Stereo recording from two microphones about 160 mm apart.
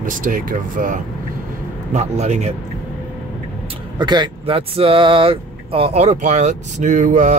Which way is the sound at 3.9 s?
30° right (ahead or behind).